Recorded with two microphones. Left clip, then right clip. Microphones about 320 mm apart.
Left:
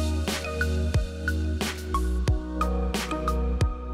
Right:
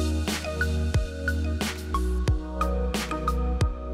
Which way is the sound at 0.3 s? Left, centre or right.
Centre.